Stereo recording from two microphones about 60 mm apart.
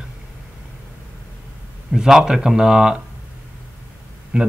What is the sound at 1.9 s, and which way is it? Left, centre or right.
Speech, centre.